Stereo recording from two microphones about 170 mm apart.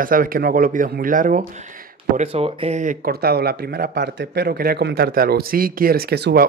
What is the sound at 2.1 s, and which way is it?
Speech, 35° right (ahead or behind).